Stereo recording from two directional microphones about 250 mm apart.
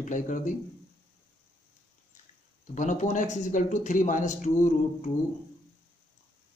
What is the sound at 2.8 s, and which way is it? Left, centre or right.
A man's voice, left.